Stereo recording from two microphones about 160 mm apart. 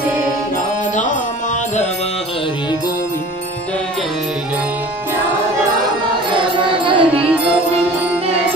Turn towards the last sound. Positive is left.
turn(degrees=-30)  # may be behind; listen again after turning